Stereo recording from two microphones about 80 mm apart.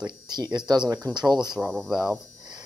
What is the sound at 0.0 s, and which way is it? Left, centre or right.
Speech, right.